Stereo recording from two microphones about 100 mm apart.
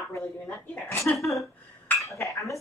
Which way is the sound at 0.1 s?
20° left (ahead or behind).